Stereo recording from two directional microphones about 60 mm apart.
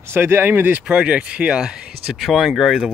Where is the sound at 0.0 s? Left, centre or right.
Right.